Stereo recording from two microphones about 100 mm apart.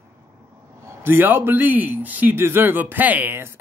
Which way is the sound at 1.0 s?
20° right (ahead or behind).